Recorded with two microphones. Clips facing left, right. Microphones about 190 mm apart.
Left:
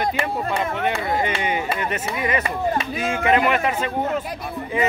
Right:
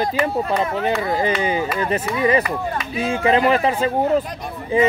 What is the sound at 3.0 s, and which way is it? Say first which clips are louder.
Speech: right 4 dB; 30° right (ahead or behind).